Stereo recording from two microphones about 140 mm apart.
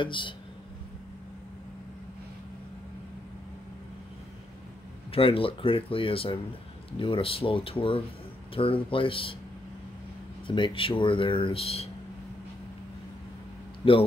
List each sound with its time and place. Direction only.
0.0 s speech: 35° left (ahead or behind)
5.1 s speech: 40° left (ahead or behind)
10.4 s speech: 35° left (ahead or behind)
13.8 s speech: 40° left (ahead or behind)